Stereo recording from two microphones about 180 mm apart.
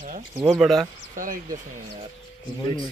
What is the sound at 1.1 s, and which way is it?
Speech, 50° right (ahead or behind).